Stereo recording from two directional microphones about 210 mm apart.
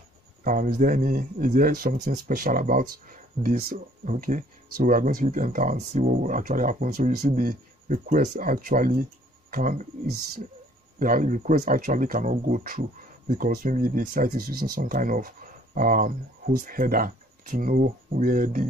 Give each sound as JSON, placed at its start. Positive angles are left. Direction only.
{"t": 0.4, "sound": "speech", "side_deg": -40}